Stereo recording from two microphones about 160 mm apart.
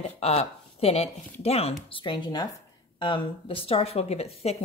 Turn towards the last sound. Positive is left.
turn(degrees=40)  # may be behind; listen again after turning